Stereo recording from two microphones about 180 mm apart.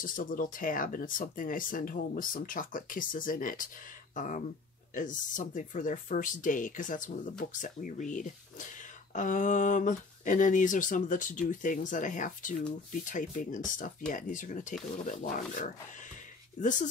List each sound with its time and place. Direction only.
0.0 s speech: 50° left (ahead or behind)